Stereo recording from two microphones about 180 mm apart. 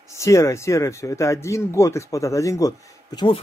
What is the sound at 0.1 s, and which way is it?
Speech, 15° left (ahead or behind).